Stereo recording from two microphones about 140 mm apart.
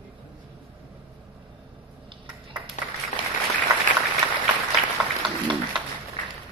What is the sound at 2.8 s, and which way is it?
Applause, 60° left (ahead or behind).